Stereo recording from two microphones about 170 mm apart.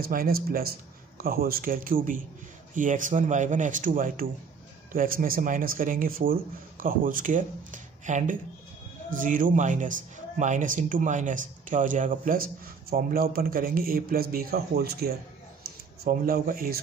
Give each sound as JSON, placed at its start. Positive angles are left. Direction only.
{"t": 0.1, "sound": "speech", "side_deg": -60}